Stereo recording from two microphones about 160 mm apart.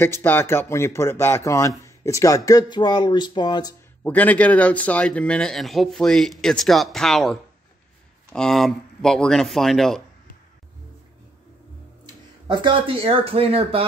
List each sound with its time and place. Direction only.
0.0 s speech: 15° left (ahead or behind)
4.0 s speech: 10° left (ahead or behind)
12.4 s speech: 30° right (ahead or behind)